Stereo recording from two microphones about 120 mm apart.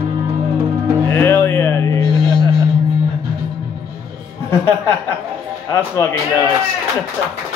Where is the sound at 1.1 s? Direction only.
20° left (ahead or behind).